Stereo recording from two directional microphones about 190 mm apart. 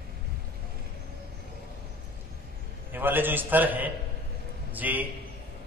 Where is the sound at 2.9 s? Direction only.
10° right (ahead or behind).